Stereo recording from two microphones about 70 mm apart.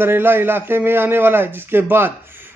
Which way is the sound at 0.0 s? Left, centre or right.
Right.